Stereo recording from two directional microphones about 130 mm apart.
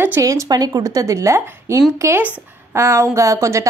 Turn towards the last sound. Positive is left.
turn(degrees=-25)  # may be behind; listen again after turning